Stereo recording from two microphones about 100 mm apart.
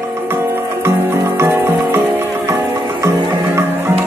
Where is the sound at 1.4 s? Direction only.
25° right (ahead or behind).